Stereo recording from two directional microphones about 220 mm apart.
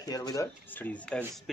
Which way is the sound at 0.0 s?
15° left (ahead or behind).